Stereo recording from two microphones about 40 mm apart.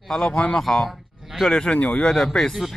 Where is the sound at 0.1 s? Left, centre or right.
Centre.